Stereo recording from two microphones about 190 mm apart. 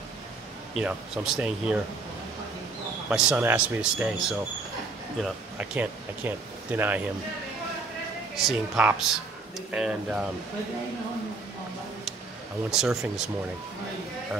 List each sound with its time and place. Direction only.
0.7 s speech: 5° right (ahead or behind)
3.1 s speech: 5° right (ahead or behind)
8.4 s speech: 5° right (ahead or behind)
12.7 s speech: centre (ahead or behind)